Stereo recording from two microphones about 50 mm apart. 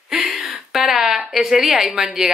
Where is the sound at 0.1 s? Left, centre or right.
Centre.